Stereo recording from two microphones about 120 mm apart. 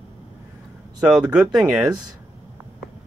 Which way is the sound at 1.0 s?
5° right (ahead or behind).